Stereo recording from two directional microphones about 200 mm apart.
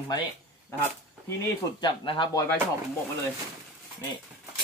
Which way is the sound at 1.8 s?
25° left (ahead or behind).